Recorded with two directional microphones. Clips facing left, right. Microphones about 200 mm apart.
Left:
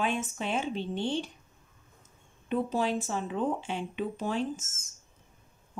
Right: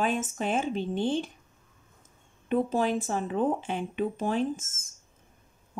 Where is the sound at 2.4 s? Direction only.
50° right (ahead or behind).